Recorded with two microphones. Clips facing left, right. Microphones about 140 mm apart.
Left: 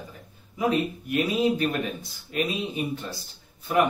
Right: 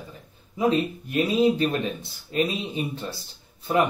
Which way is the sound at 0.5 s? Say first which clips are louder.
Right 2 dB; 30° right (ahead or behind).